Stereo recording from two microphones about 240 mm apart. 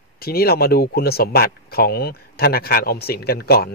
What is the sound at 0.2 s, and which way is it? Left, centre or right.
Speech, left.